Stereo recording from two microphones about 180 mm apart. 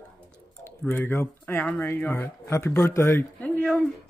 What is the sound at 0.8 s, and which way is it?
Speech, 10° left (ahead or behind).